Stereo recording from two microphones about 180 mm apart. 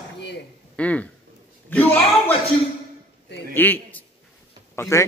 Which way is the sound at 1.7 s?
10° left (ahead or behind).